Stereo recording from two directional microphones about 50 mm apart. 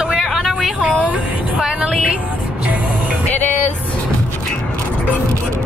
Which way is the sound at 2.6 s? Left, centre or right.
Right.